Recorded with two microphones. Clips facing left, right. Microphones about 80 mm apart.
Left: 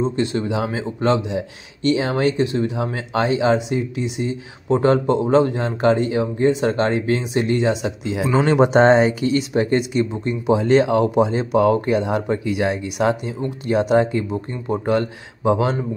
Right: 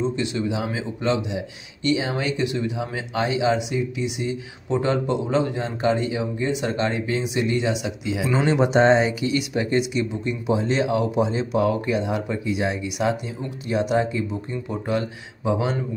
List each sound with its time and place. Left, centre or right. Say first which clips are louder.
0.0 s speech: left 3 dB; left
10.5 s speech: left 6 dB; left
12.8 s speech: left 4 dB; left